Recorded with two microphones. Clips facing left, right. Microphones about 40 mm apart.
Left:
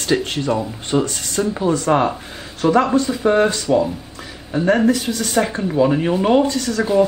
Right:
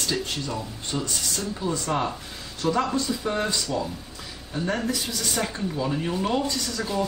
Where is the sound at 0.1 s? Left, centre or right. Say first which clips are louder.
Left 12 dB; left.